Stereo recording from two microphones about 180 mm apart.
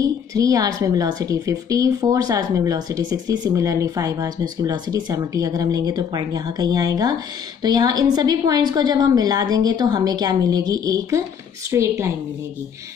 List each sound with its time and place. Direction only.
0.0 s a woman's voice: 20° right (ahead or behind)